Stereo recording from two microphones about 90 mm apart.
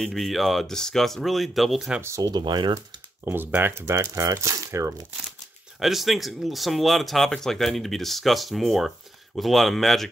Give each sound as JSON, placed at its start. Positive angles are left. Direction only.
{"t": 0.0, "sound": "speech", "side_deg": 0}
{"t": 2.0, "sound": "speech", "side_deg": -30}
{"t": 2.2, "sound": "speech", "side_deg": -55}
{"t": 3.3, "sound": "speech", "side_deg": -25}
{"t": 5.8, "sound": "speech", "side_deg": 0}